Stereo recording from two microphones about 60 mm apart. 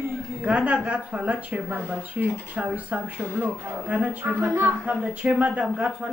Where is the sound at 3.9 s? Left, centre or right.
Right.